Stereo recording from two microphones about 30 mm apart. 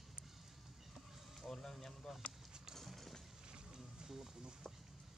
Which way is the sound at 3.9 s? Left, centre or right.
Centre.